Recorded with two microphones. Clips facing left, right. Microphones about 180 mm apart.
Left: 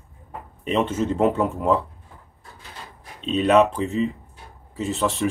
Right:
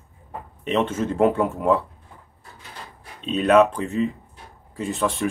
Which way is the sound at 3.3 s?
Centre (ahead or behind).